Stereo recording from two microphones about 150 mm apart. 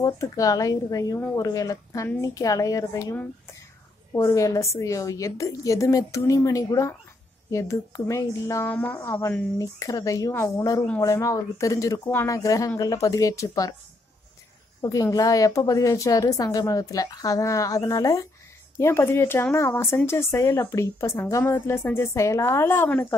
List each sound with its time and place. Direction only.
0.0 s a woman's voice: 20° left (ahead or behind)
14.8 s a woman's voice: 20° left (ahead or behind)